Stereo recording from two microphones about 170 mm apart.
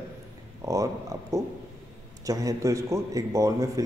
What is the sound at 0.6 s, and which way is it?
A man's voice, 20° right (ahead or behind).